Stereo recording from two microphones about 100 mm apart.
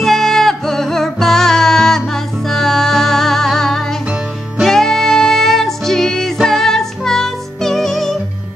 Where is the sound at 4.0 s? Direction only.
10° right (ahead or behind).